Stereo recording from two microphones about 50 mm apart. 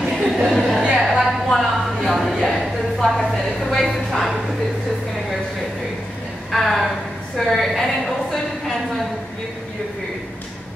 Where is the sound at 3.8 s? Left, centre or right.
Centre.